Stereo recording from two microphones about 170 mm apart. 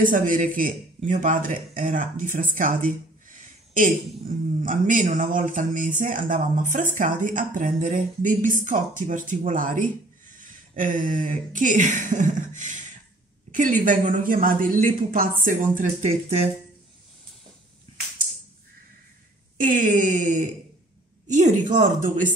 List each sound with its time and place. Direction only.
0.0 s speech: 55° right (ahead or behind)
3.3 s a sound: 50° right (ahead or behind)
4.6 s speech: 50° right (ahead or behind)
19.6 s speech: 50° right (ahead or behind)